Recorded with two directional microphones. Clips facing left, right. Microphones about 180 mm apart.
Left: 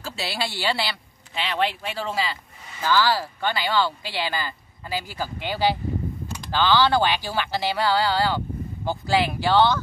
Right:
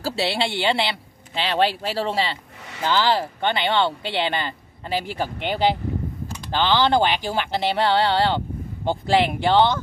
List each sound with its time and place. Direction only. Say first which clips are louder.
0.0 s speech: right 6 dB; 30° right (ahead or behind)